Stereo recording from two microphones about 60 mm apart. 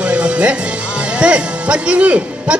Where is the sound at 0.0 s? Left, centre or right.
Right.